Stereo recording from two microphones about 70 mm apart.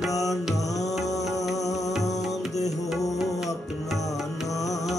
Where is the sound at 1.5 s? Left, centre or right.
Left.